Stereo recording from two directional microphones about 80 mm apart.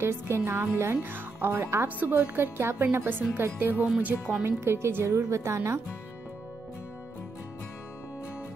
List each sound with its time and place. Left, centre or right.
0.0 s a woman's voice: right